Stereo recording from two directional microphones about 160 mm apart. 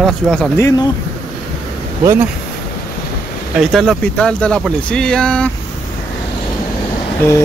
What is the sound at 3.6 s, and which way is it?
Speech, centre (ahead or behind).